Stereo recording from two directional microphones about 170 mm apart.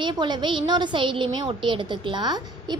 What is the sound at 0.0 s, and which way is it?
A woman's voice, 25° right (ahead or behind).